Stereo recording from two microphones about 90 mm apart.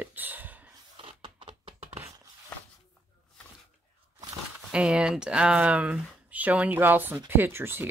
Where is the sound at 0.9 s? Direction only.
75° right (ahead or behind).